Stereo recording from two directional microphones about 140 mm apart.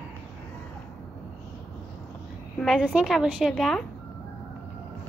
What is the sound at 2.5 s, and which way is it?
A woman's voice, centre (ahead or behind).